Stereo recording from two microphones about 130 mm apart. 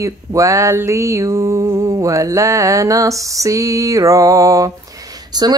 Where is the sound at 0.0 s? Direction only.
25° right (ahead or behind).